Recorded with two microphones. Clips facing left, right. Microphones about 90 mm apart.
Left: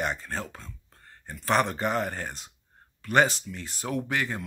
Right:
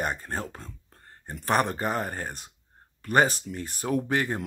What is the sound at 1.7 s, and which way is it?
Speech, 30° right (ahead or behind).